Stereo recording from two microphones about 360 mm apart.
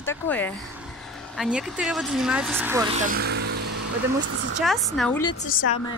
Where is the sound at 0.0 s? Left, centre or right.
Centre; by 3.5 s right.